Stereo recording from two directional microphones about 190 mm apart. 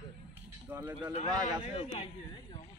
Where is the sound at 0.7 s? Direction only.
10° right (ahead or behind).